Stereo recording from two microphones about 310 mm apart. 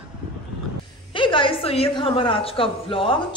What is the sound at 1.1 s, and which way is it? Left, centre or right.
A woman's voice, centre.